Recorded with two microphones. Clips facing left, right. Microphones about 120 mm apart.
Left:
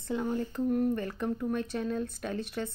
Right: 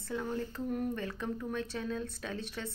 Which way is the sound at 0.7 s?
Centre (ahead or behind).